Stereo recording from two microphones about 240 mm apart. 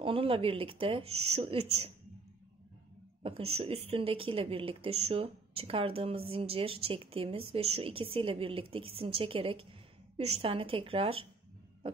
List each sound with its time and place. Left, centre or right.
0.0 s speech: right
3.2 s speech: right